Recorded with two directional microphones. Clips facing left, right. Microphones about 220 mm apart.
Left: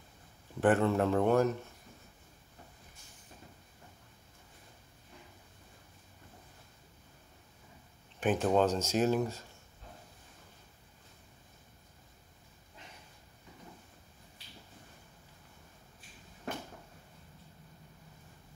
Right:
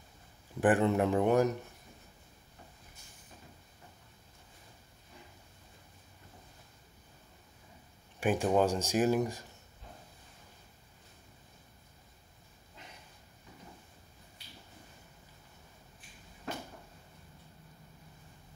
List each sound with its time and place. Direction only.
0.6 s speech: 15° right (ahead or behind)
8.2 s speech: 10° right (ahead or behind)